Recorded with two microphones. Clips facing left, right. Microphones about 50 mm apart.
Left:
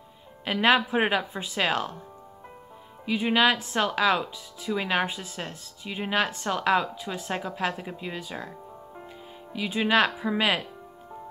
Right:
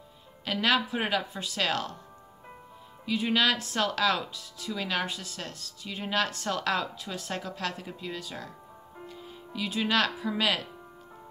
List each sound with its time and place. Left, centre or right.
0.5 s speech: left
3.1 s speech: centre